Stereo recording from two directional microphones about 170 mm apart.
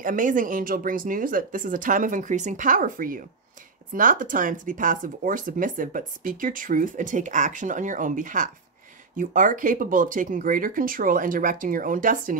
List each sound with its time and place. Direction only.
0.0 s speech: 50° right (ahead or behind)